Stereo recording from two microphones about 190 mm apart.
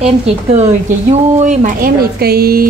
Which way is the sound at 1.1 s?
40° right (ahead or behind).